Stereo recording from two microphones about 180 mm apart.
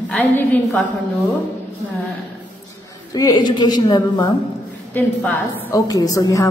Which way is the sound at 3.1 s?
20° left (ahead or behind).